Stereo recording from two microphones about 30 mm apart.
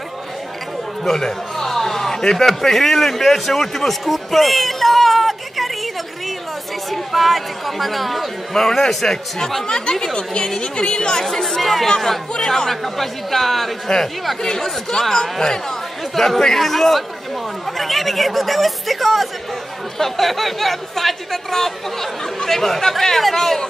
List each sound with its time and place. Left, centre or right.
1.0 s a sound: centre
2.3 s a man's voice: centre
6.9 s a man's voice: centre
8.5 s speech: centre
9.7 s a woman's voice: left
11.5 s speech: centre
12.8 s a man's voice: centre
13.9 s a woman's voice: centre